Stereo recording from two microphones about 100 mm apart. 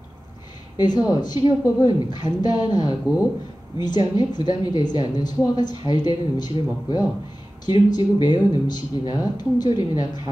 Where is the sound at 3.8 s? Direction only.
45° left (ahead or behind).